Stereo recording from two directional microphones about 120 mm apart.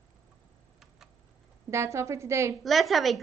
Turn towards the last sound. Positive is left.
turn(degrees=0)  # may be behind; listen again after turning